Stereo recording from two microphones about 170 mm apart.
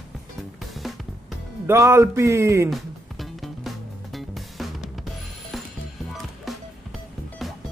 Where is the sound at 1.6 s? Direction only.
15° right (ahead or behind).